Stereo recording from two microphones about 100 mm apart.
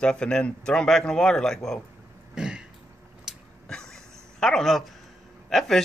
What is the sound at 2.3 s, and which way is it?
Throat clearing, 5° right (ahead or behind).